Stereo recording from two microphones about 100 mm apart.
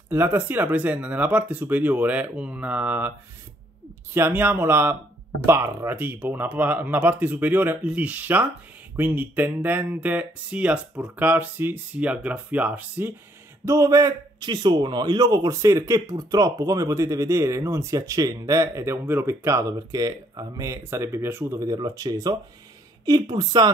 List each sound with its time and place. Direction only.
0.1 s speech: 20° right (ahead or behind)
4.1 s speech: 20° right (ahead or behind)
13.7 s a man's voice: 35° right (ahead or behind)